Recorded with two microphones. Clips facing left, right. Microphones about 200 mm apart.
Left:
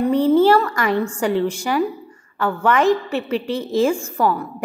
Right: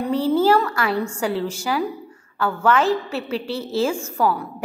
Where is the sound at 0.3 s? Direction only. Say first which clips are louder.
Left 3 dB; 10° right (ahead or behind).